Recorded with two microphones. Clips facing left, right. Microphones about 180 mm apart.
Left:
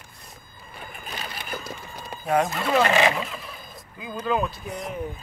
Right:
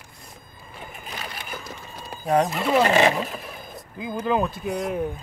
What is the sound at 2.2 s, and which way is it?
Speech, 35° right (ahead or behind).